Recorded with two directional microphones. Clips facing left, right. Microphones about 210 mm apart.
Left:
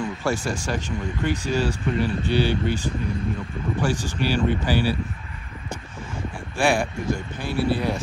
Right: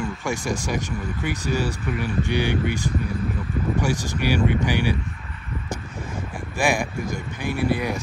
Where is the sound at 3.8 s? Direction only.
15° right (ahead or behind).